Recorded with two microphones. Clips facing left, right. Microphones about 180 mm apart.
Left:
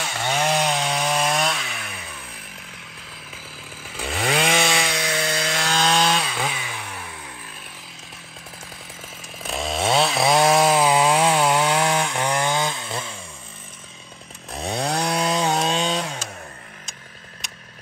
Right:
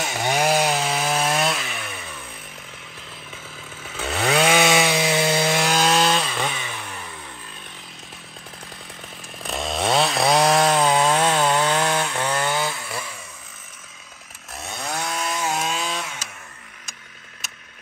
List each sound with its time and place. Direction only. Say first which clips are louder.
0.0 s chainsaw: right 2 dB; 20° right (ahead or behind); by 2.0 s centre (ahead or behind)
3.8 s chainsaw: right 2 dB; centre (ahead or behind)
4.7 s wood: right 5 dB; 25° right (ahead or behind)
5.7 s chainsaw: left 3 dB; 5° right (ahead or behind)
9.4 s chainsaw: even; centre (ahead or behind); by 13.2 s 25° left (ahead or behind)
14.5 s chainsaw: left 6 dB; 30° left (ahead or behind)